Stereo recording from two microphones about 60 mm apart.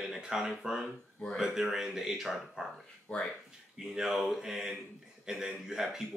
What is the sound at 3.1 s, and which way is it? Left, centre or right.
Speech, centre.